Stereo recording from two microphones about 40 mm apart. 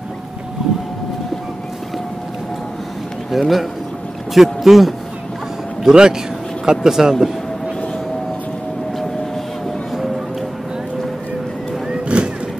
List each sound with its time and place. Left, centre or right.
3.3 s speech: centre
5.9 s speech: right
9.9 s music: centre
11.9 s a sound: right